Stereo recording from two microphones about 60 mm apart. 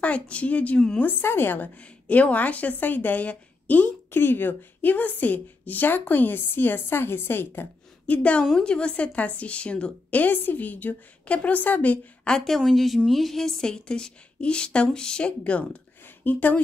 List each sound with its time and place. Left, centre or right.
0.0 s a woman's voice: left
1.2 s a woman's voice: left
1.8 s a woman's voice: left
8.1 s a woman's voice: left
10.1 s a woman's voice: left
12.3 s a woman's voice: centre; by 16.6 s left